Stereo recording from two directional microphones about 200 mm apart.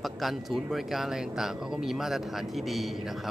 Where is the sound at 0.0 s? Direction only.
Centre (ahead or behind).